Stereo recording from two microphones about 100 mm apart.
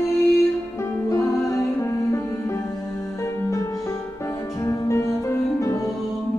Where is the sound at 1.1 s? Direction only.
30° left (ahead or behind).